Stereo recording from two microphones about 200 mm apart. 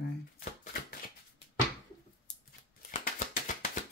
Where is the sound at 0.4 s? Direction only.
45° left (ahead or behind).